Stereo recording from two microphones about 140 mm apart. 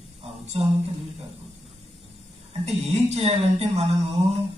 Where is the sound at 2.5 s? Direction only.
50° right (ahead or behind).